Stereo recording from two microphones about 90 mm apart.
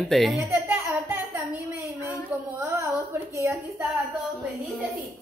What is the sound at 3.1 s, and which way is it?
Speech, 35° right (ahead or behind).